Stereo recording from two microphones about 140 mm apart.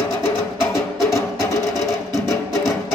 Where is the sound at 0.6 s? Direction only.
20° left (ahead or behind).